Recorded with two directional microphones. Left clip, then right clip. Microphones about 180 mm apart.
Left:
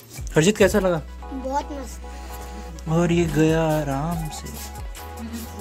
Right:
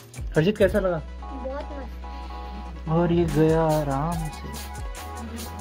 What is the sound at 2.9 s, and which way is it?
Speech, 5° left (ahead or behind).